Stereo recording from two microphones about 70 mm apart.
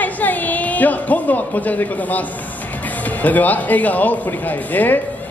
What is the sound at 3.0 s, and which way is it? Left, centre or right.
Music, left.